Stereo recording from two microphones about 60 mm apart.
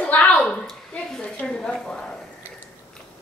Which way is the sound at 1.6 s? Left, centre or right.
Centre.